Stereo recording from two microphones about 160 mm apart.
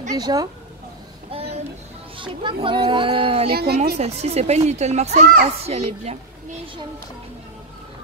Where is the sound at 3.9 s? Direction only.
40° right (ahead or behind).